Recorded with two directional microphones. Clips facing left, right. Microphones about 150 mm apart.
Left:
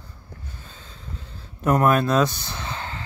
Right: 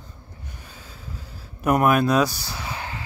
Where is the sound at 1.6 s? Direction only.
10° right (ahead or behind).